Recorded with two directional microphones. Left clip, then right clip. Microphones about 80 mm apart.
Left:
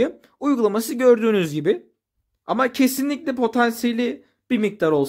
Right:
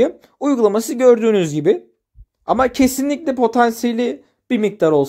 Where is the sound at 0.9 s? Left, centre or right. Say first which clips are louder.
Right 3 dB; centre.